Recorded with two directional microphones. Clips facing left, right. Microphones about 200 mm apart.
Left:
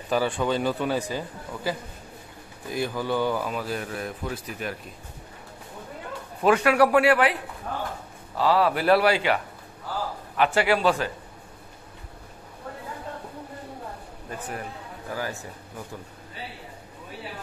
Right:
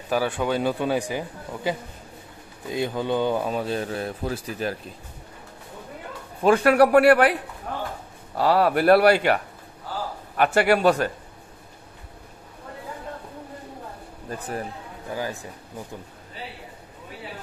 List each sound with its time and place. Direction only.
0.1 s a man's voice: 10° right (ahead or behind); by 4.7 s 30° right (ahead or behind)
6.6 s speech: 45° right (ahead or behind)
8.4 s speech: 50° right (ahead or behind)
15.0 s a man's voice: 20° right (ahead or behind)